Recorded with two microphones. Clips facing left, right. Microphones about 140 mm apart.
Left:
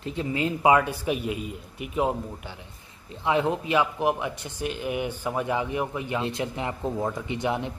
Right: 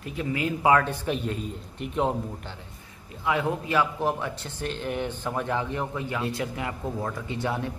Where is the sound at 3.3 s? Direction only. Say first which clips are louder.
Left 2 dB; 25° left (ahead or behind).